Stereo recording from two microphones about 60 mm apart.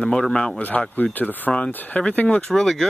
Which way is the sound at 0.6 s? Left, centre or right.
Left.